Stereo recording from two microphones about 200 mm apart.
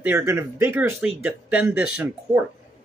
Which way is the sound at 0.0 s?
10° right (ahead or behind).